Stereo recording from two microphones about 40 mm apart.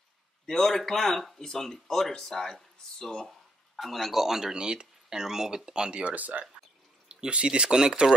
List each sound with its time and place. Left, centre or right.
0.5 s speech: centre
3.7 s speech: centre
5.9 s speech: right
6.1 s speech: right
7.1 s speech: right